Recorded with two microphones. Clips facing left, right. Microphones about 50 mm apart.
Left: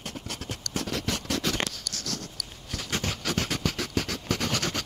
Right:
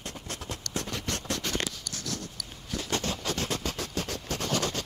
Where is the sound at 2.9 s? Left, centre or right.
Left.